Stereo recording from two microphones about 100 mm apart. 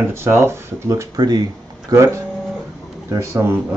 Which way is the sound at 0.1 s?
25° right (ahead or behind).